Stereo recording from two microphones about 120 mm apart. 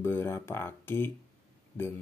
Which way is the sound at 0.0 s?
20° left (ahead or behind).